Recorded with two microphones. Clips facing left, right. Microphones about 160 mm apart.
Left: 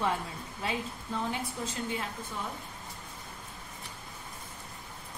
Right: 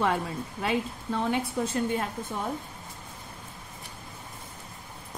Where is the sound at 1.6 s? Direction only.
60° right (ahead or behind).